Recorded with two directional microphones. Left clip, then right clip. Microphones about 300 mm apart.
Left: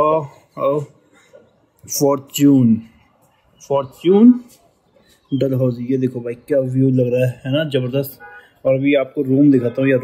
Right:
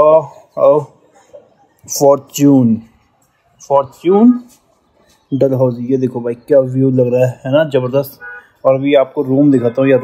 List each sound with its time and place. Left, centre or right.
0.0 s a sound: centre
1.9 s speech: centre
5.4 s speech: centre